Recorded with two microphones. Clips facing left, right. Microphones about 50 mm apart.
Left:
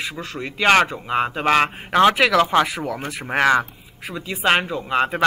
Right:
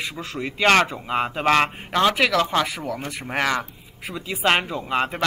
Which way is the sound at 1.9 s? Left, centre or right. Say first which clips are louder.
Left 5 dB; centre.